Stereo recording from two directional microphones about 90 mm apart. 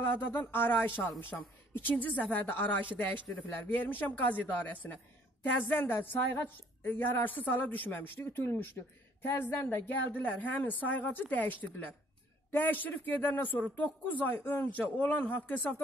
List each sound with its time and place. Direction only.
0.0 s a woman's voice: 20° left (ahead or behind)